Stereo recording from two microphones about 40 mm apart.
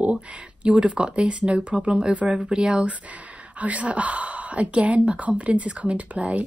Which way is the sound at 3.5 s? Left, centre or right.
Right.